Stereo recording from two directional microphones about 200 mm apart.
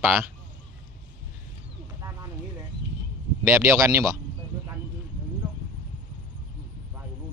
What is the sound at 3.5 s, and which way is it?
Speech, 10° right (ahead or behind).